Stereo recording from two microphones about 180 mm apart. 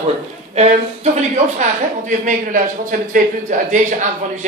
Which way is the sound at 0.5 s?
35° right (ahead or behind).